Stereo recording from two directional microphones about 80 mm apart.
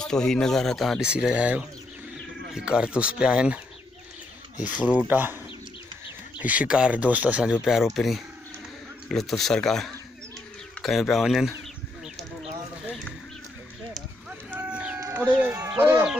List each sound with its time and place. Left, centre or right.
0.0 s speech: centre
1.0 s speech: centre
6.4 s speech: centre
7.6 s speech: centre
14.5 s a sound: centre
15.8 s speech: right